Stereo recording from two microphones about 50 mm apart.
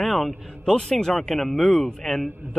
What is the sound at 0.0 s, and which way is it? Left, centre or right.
A man's voice, centre.